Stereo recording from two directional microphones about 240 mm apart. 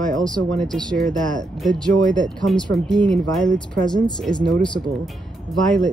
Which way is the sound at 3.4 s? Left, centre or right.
Centre.